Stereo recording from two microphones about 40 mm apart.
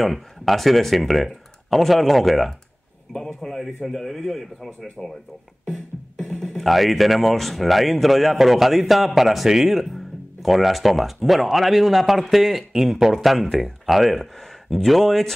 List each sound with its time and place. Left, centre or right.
0.0 s speech: centre
5.0 s speech: right
5.7 s beatboxing: centre
6.4 s speech: centre